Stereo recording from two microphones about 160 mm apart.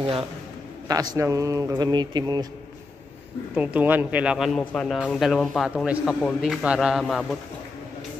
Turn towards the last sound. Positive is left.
turn(degrees=0)  # may be behind; listen again after turning